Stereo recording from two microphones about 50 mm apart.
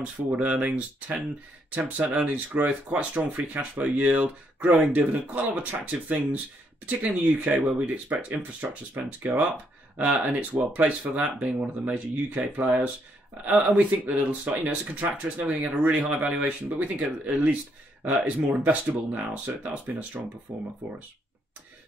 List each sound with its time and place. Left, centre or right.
0.0 s speech: right
20.8 s speech: right